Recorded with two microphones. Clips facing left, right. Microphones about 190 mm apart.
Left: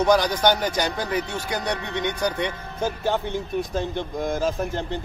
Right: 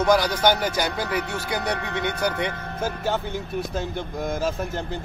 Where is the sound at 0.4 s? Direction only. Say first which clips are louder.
Even; 10° right (ahead or behind).